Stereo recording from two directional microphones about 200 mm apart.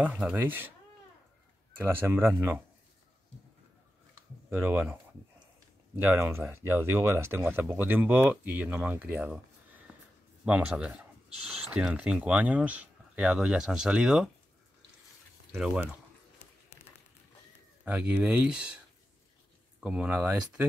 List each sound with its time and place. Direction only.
0.0 s speech: 5° right (ahead or behind)
1.8 s speech: 10° right (ahead or behind)
4.5 s speech: 10° right (ahead or behind)
5.9 s speech: 10° right (ahead or behind)
10.4 s speech: 5° right (ahead or behind)
15.5 s speech: 5° right (ahead or behind)
17.8 s speech: 5° right (ahead or behind)
19.8 s speech: 5° right (ahead or behind)